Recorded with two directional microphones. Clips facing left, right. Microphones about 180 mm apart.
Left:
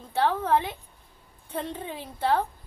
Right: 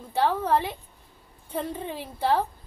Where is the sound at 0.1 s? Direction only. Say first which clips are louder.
Even; 10° right (ahead or behind).